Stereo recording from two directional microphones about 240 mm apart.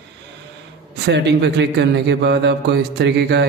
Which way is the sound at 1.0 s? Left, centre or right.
Right.